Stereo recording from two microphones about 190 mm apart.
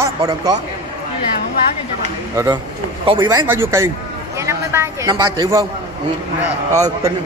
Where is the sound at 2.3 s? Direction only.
15° right (ahead or behind).